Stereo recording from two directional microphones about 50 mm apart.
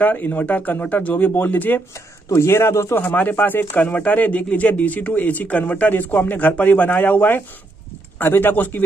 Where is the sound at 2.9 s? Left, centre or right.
Left.